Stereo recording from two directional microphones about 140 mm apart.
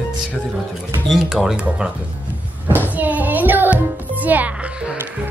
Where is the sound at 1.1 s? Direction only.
5° right (ahead or behind).